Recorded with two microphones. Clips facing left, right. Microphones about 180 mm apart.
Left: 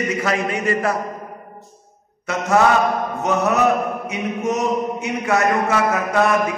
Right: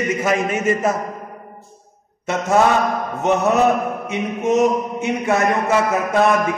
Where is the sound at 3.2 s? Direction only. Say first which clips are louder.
Right 2 dB; 25° right (ahead or behind).